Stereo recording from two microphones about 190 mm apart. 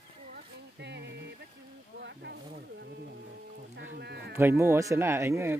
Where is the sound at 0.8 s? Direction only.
65° right (ahead or behind).